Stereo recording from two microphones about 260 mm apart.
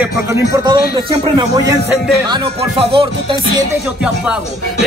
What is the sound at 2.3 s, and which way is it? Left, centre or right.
Music, right.